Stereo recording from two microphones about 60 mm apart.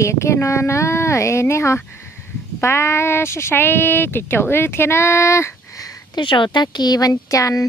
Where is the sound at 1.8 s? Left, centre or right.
Left.